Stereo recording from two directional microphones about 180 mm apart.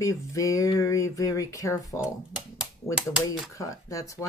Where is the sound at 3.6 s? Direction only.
20° left (ahead or behind).